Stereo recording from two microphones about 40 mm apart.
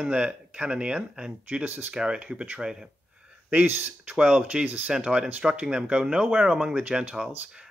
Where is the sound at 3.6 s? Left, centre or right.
Right.